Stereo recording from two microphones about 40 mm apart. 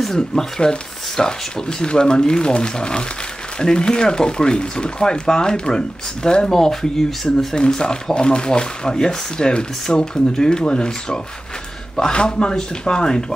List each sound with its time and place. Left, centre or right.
0.0 s speech: centre